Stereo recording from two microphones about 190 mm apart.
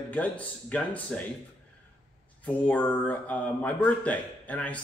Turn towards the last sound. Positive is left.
turn(degrees=10)  # may be behind; listen again after turning